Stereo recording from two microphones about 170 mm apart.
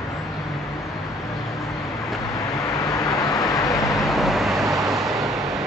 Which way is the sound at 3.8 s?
Centre (ahead or behind).